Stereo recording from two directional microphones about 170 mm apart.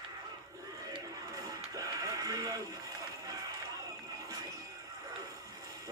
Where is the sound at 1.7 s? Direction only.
20° right (ahead or behind).